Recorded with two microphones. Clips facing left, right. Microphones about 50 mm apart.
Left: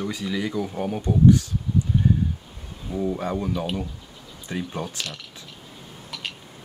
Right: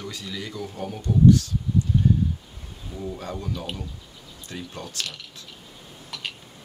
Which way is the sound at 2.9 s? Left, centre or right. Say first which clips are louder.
Left 7 dB; left.